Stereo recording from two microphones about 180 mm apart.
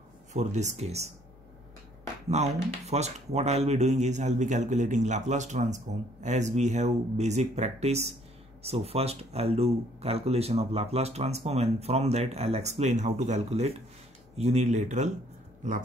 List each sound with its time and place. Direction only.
0.3 s speech: 40° right (ahead or behind)
2.2 s speech: 40° right (ahead or behind)